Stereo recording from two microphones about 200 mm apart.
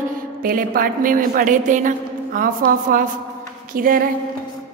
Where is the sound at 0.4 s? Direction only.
45° right (ahead or behind).